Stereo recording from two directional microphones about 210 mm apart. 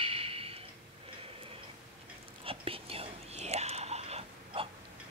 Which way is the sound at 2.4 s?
25° right (ahead or behind).